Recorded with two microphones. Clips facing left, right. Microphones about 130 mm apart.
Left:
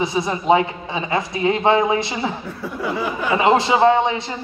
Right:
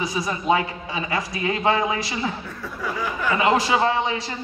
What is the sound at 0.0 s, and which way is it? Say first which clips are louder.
A woman's voice: left 4 dB; 25° left (ahead or behind).